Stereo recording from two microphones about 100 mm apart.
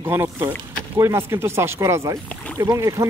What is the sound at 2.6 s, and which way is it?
Speech, 35° right (ahead or behind).